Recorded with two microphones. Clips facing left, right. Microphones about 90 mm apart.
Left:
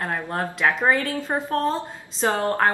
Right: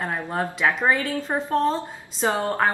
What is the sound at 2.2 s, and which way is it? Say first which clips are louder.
Speech: left 1 dB; 15° right (ahead or behind).